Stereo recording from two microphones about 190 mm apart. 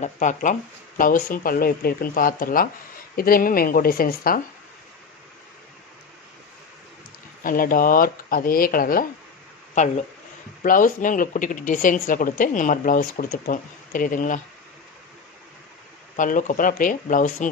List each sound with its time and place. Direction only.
0.0 s speech: 40° left (ahead or behind)
7.4 s speech: 50° left (ahead or behind)
9.8 s speech: 40° left (ahead or behind)
16.2 s speech: 45° left (ahead or behind)